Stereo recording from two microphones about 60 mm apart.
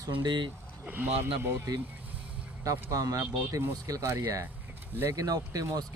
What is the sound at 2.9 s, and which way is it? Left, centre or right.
Speech, right.